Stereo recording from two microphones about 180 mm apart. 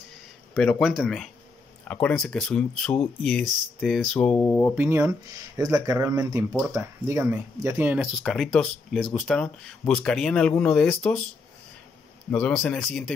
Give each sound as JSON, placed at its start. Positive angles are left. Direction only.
{"t": 0.6, "sound": "speech", "side_deg": 5}
{"t": 4.7, "sound": "speech", "side_deg": -10}
{"t": 12.3, "sound": "speech", "side_deg": 5}